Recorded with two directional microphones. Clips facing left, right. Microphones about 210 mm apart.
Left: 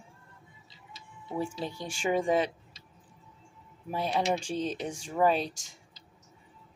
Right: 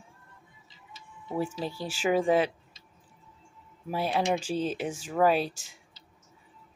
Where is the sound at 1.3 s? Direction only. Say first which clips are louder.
Right 2 dB; 5° right (ahead or behind).